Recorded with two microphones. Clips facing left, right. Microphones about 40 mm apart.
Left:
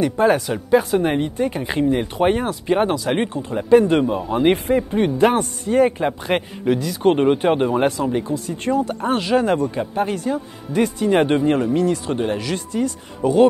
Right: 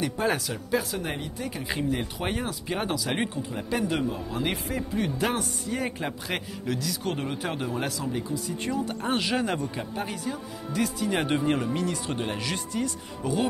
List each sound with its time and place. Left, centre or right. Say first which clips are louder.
0.0 s speech: left 10 dB; centre
0.5 s speech: left 11 dB; left
3.8 s a man's voice: left 10 dB; left
7.0 s a man's voice: left 14 dB; left; by 9.6 s centre
10.2 s speech: left 9 dB; left
12.1 s speech: left 8 dB; centre
12.5 s a man's voice: left 7 dB; left
13.2 s speech: left 13 dB; left